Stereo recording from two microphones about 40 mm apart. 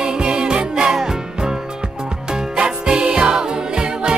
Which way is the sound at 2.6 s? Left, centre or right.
Right.